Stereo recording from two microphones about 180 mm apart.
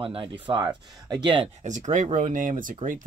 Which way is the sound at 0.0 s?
30° right (ahead or behind).